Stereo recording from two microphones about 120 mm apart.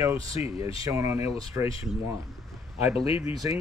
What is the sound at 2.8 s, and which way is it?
Speech, 55° left (ahead or behind).